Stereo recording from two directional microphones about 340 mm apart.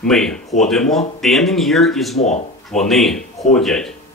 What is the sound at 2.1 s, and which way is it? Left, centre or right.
Speech, centre.